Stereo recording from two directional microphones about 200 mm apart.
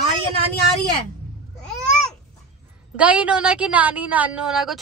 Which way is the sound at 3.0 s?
5° right (ahead or behind).